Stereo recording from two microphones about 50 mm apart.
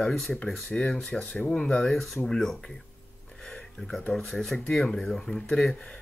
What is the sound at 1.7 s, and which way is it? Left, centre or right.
Speech, centre.